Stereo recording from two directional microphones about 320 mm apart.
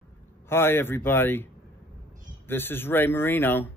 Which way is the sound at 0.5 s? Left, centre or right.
Centre.